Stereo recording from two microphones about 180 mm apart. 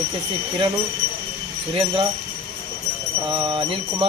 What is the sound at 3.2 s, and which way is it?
Jingle bell, 25° right (ahead or behind).